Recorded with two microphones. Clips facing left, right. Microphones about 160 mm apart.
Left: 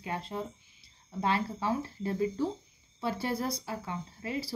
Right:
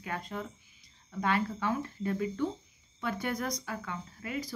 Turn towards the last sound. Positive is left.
turn(degrees=30)  # may be behind; listen again after turning